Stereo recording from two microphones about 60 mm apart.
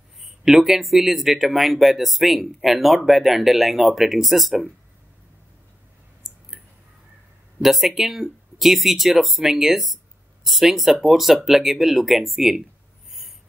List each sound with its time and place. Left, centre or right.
0.2 s speech: centre
7.6 s speech: centre